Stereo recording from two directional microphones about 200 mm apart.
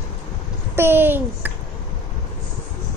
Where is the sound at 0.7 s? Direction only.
10° right (ahead or behind).